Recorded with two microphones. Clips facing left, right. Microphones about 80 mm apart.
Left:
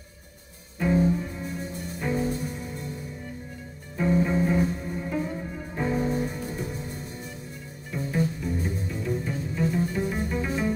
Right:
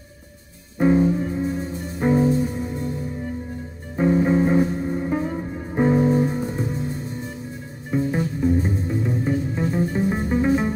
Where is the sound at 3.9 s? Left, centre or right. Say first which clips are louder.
Right 6 dB; right.